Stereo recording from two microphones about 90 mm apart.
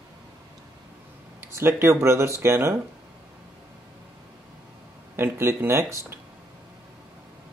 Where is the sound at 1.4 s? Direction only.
30° right (ahead or behind).